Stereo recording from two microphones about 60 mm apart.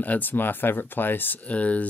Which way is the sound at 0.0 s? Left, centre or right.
Left.